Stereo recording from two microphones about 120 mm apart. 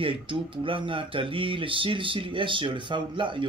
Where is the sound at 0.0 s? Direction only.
45° right (ahead or behind).